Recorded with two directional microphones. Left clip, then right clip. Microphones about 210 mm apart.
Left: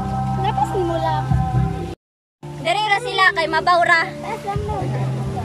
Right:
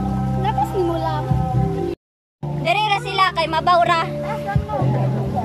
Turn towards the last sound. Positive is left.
turn(degrees=-5)  # may be behind; listen again after turning